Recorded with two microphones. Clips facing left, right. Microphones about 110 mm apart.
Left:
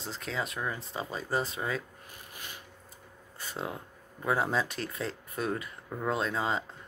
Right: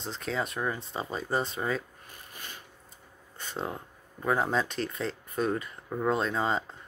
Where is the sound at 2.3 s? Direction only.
15° left (ahead or behind).